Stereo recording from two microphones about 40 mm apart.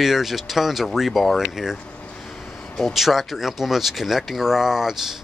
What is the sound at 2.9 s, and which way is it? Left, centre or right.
Speech, centre.